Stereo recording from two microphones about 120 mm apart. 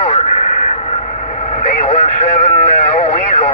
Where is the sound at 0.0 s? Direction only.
65° left (ahead or behind).